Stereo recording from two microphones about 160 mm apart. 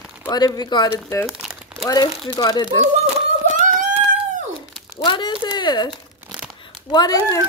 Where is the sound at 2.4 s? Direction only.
25° left (ahead or behind).